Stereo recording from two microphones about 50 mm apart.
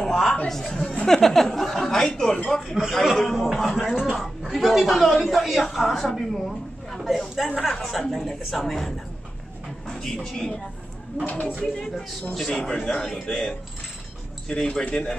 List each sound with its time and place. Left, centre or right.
0.1 s a sound: centre
0.5 s speech: centre
2.6 s a woman's voice: centre
10.2 s speech: centre
11.2 s speech: left
11.6 s speech: centre